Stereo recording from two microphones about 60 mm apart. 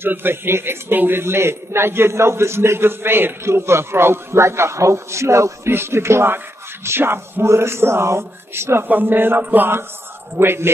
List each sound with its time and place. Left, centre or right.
0.0 s a man's voice: right
8.8 s a man's voice: right